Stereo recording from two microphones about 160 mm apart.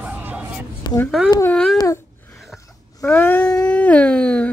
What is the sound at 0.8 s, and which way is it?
Speech, 25° left (ahead or behind).